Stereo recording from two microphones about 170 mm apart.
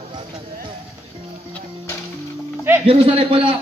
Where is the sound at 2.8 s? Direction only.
35° right (ahead or behind).